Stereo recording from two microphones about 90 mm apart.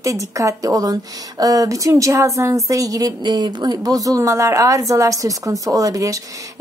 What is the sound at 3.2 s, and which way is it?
A woman's voice, 50° right (ahead or behind).